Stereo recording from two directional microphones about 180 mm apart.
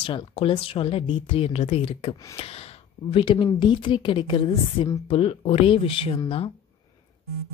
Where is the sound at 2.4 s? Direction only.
35° left (ahead or behind).